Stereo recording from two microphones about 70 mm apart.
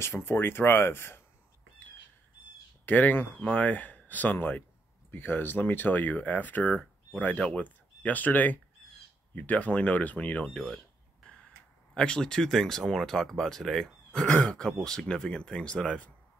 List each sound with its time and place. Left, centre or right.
0.0 s speech: left
2.8 s speech: left
10.5 s speech: centre
11.2 s a sound: centre
11.9 s speech: centre